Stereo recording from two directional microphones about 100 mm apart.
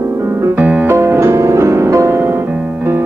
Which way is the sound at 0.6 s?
15° right (ahead or behind).